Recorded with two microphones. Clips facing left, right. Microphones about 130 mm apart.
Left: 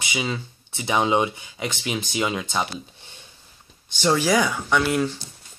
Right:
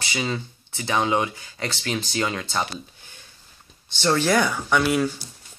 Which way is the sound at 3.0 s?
25° left (ahead or behind).